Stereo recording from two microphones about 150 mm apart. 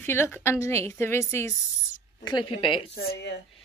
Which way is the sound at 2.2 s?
30° left (ahead or behind).